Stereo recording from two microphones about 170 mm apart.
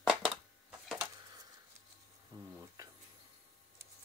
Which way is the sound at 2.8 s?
20° right (ahead or behind).